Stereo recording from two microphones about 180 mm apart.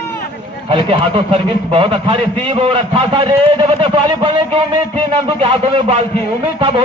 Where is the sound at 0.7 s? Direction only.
30° right (ahead or behind).